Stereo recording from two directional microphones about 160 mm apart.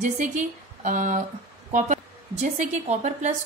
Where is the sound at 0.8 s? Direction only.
50° right (ahead or behind).